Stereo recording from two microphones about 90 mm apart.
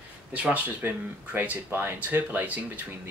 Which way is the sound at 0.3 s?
15° right (ahead or behind).